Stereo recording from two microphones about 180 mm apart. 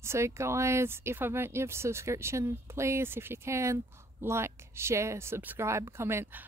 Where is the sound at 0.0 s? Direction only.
15° right (ahead or behind).